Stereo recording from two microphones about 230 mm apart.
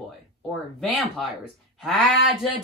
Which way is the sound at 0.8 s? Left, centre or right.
Centre.